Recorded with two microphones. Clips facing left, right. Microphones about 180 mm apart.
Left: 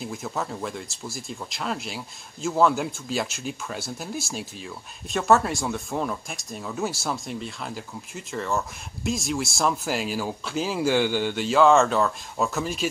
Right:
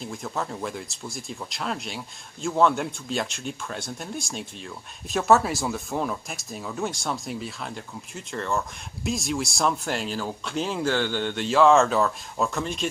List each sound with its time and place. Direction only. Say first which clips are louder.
0.0 s speech: left 1 dB; 5° left (ahead or behind)